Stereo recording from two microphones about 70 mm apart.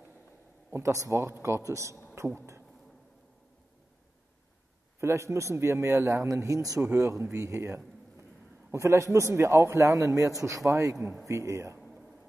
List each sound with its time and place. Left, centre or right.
0.7 s a man's voice: right
5.0 s a man's voice: right
6.8 s a man's voice: right
7.3 s a sound: right
8.7 s a man's voice: right